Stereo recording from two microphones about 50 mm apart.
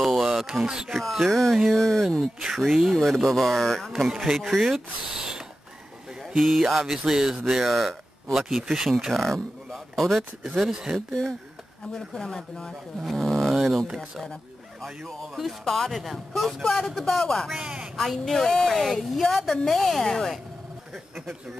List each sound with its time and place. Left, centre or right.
0.0 s a sound: centre
0.8 s a woman's voice: centre
5.1 s a sound: centre
6.3 s a woman's voice: centre
7.4 s speech: centre
8.4 s a woman's voice: centre
10.4 s speech: centre
11.9 s speech: centre
14.8 s a woman's voice: centre
17.6 s speech: centre
17.9 s a woman's voice: centre